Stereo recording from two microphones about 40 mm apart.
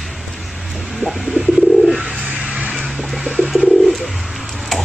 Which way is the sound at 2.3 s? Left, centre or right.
Right.